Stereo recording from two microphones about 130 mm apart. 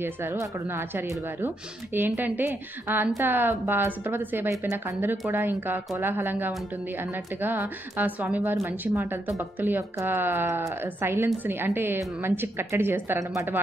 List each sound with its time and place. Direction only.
0.0 s speech: 20° right (ahead or behind)